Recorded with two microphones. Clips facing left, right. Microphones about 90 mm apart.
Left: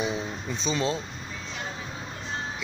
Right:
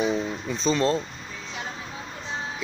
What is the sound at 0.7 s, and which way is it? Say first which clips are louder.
Speech: right 5 dB; 5° left (ahead or behind).